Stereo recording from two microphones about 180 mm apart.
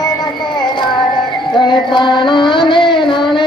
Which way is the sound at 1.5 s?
25° left (ahead or behind).